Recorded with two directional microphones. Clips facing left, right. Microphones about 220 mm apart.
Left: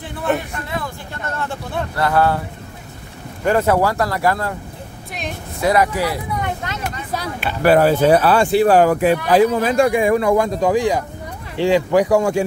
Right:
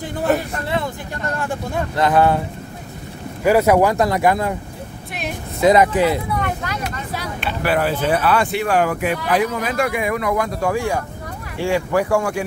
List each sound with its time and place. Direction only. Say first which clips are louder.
1.4 s speech: even; 15° right (ahead or behind)
3.4 s speech: right 2 dB; 10° right (ahead or behind)
5.6 s speech: right 3 dB; 20° right (ahead or behind)
6.3 s vehicle: right 1 dB; 20° left (ahead or behind)
7.6 s speech: left 7 dB; 40° left (ahead or behind); by 12.4 s 20° left (ahead or behind)